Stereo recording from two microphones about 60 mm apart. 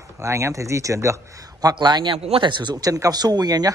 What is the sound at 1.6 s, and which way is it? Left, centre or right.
Speech, right.